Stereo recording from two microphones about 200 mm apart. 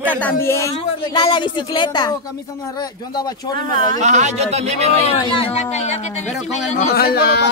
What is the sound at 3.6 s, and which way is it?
A woman's voice, 45° right (ahead or behind).